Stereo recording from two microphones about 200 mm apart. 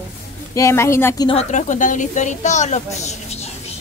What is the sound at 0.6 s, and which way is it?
Speech, 15° left (ahead or behind).